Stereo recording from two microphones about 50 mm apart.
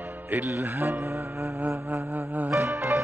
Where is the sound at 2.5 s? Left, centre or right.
Right.